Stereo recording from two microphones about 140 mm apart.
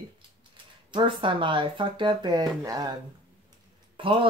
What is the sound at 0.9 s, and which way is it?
Speech, 35° right (ahead or behind).